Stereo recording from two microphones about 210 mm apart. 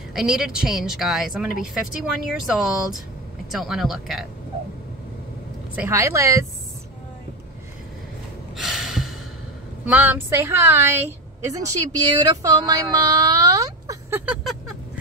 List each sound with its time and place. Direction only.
0.1 s a woman's voice: centre (ahead or behind)
5.8 s a woman's voice: 15° right (ahead or behind)
8.5 s gasp: centre (ahead or behind)
9.8 s a woman's voice: 10° right (ahead or behind)